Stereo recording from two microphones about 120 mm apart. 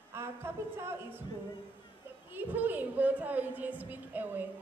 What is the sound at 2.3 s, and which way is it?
A woman's voice, 15° right (ahead or behind).